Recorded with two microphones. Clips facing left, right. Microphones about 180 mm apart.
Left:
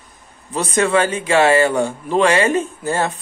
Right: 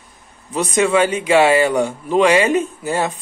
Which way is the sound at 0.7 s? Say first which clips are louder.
Right 1 dB; 10° right (ahead or behind).